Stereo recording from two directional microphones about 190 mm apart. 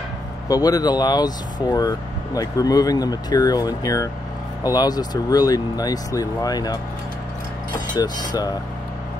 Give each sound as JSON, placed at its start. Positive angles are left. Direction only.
{"t": 0.5, "sound": "speech", "side_deg": 20}
{"t": 7.9, "sound": "speech", "side_deg": 20}